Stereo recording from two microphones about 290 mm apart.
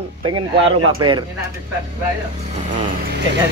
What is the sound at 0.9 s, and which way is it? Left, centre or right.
Speech, centre.